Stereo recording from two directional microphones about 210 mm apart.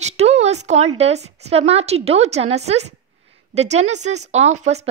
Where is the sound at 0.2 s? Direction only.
30° right (ahead or behind).